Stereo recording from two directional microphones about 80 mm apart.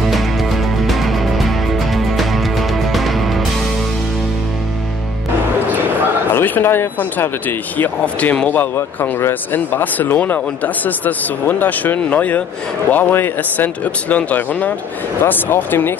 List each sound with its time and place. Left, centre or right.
0.8 s music: centre
6.3 s speech: left